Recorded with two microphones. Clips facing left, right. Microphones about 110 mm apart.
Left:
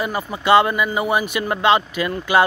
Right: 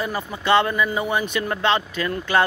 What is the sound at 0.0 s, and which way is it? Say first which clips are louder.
Speech: left 3 dB; 10° left (ahead or behind).